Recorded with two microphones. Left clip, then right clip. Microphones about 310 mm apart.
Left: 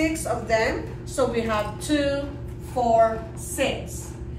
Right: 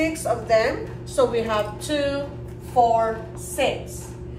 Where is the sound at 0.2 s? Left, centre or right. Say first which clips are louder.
Right 3 dB; centre.